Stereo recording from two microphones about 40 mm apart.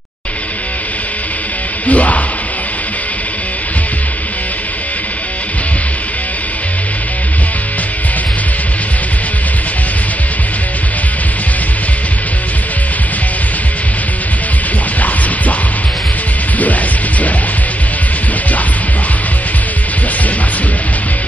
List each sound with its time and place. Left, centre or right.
1.9 s music: left